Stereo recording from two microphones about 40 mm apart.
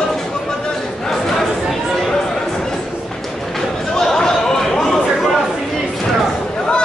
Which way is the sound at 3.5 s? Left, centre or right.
Centre.